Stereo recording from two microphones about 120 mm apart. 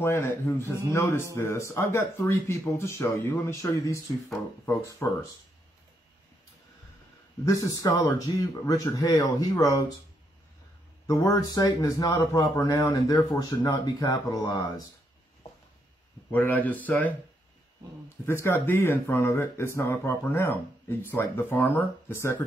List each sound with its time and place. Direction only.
0.0 s speech: 20° left (ahead or behind)
5.0 s speech: 20° left (ahead or behind)
7.4 s speech: 30° left (ahead or behind)
11.1 s speech: 30° left (ahead or behind)
16.3 s speech: 15° left (ahead or behind)
18.2 s speech: 20° left (ahead or behind)